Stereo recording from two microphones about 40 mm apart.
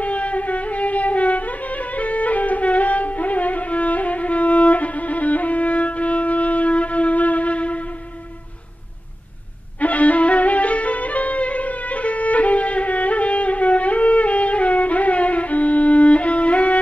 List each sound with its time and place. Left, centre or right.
0.0 s music: left
9.8 s music: left